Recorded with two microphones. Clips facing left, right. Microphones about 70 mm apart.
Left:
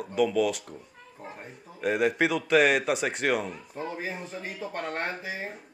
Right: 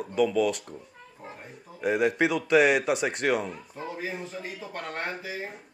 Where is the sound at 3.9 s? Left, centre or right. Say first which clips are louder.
Even; left.